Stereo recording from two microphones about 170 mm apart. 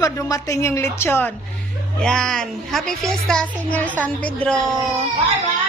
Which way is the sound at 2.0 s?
5° left (ahead or behind).